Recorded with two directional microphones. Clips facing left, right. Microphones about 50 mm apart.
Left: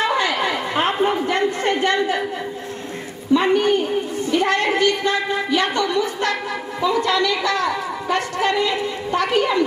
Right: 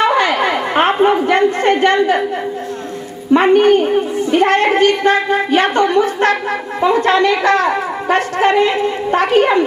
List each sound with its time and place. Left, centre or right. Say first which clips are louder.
0.0 s chatter: right 6 dB; right
3.3 s a child's voice: right 7 dB; right